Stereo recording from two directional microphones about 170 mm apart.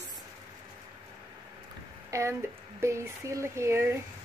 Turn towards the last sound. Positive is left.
turn(degrees=-15)  # may be behind; listen again after turning